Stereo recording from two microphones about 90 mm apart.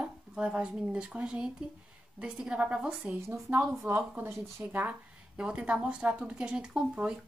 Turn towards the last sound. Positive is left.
turn(degrees=-10)  # may be behind; listen again after turning